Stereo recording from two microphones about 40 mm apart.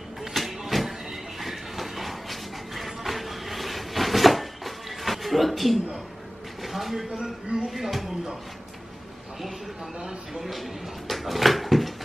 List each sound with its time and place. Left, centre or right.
0.2 s a sound: centre
7.5 s speech: centre
9.9 s speech: centre
10.4 s speech: centre